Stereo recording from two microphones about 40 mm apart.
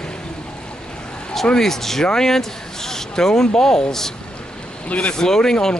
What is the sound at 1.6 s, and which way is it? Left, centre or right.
A man's voice, centre.